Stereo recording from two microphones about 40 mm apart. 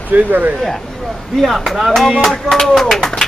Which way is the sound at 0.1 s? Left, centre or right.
Right.